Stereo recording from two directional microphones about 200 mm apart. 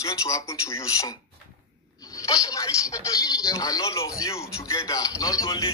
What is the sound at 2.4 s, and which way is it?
Speech, 15° left (ahead or behind).